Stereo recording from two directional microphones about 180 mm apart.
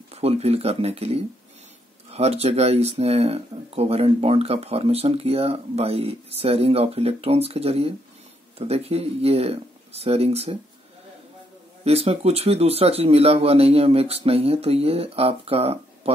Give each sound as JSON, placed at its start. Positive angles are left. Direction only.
{"t": 0.1, "sound": "speech", "side_deg": -35}
{"t": 11.8, "sound": "speech", "side_deg": -35}